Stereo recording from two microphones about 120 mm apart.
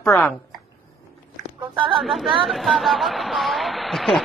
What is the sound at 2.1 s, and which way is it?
Speech, centre (ahead or behind).